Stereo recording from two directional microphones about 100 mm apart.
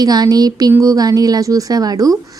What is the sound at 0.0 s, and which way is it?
A woman's voice, 40° right (ahead or behind).